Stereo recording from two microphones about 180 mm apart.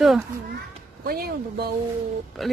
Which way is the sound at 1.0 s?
60° right (ahead or behind).